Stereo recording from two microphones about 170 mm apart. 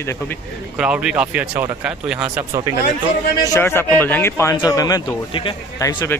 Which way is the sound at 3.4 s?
15° left (ahead or behind).